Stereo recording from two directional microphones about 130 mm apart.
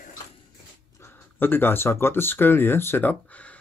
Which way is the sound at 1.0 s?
15° left (ahead or behind).